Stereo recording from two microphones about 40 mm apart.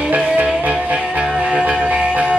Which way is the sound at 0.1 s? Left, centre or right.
Right.